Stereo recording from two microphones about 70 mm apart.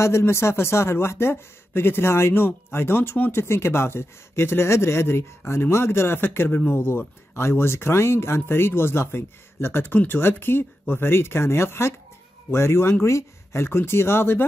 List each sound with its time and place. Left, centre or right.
0.0 s speech: left